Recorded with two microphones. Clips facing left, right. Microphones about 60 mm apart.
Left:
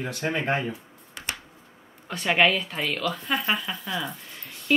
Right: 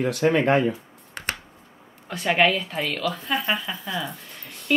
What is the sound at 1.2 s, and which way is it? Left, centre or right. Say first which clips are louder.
Finger snapping: right 4 dB; right.